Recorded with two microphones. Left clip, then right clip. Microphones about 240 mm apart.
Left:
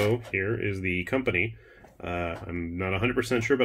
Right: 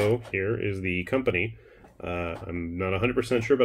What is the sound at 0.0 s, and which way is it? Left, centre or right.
Speech, centre.